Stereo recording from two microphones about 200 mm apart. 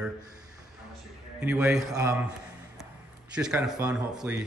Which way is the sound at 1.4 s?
5° right (ahead or behind).